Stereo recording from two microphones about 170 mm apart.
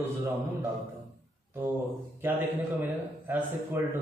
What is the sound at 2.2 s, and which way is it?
A man's voice, 10° right (ahead or behind).